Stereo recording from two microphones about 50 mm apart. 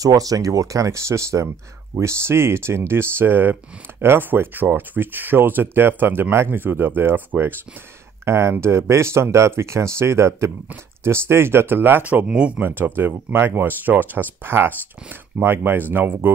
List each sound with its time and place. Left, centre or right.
0.5 s speech: right
2.0 s speech: right
8.3 s speech: right
12.0 s speech: right
12.6 s speech: right